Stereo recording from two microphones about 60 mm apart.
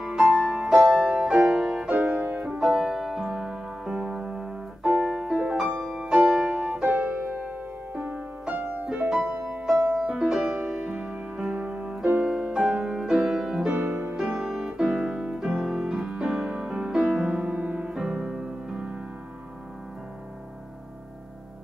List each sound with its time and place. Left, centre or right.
0.0 s music: centre
2.0 s music: right
2.6 s music: centre
6.9 s piano: right
7.4 s music: right
9.7 s music: centre
11.5 s music: right
12.0 s piano: right
12.3 s music: centre
13.7 s music: right
14.1 s music: centre
17.9 s piano: centre
18.2 s music: centre